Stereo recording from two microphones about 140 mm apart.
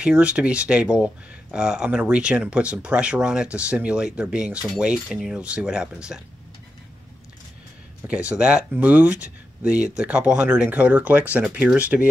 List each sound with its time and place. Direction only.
0.0 s speech: 10° right (ahead or behind)
8.1 s speech: 10° right (ahead or behind)